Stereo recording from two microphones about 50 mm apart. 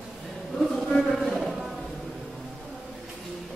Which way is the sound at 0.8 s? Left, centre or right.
Centre.